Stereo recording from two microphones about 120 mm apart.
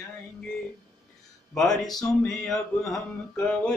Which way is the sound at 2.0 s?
5° left (ahead or behind).